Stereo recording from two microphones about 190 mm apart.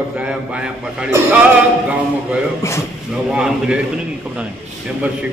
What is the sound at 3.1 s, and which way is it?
A man's voice, 5° right (ahead or behind).